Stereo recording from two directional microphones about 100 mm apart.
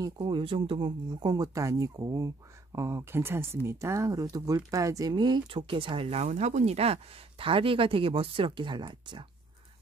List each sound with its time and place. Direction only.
0.2 s speech: 60° right (ahead or behind); by 5.1 s 35° right (ahead or behind)
5.1 s speech: 50° right (ahead or behind)